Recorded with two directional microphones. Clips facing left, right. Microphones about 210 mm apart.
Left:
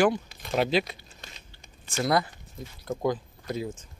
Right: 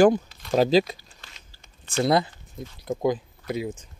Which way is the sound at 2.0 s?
25° right (ahead or behind).